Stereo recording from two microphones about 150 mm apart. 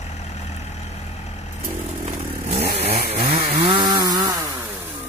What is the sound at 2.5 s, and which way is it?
Vehicle, 85° right.